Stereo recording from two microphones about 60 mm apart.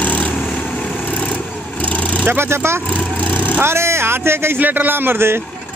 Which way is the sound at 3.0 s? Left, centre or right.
Left.